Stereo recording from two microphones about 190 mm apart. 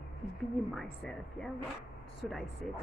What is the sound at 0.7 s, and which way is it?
Speech, centre (ahead or behind).